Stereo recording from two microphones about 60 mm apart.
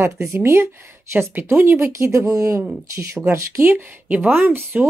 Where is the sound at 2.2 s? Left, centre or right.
Right.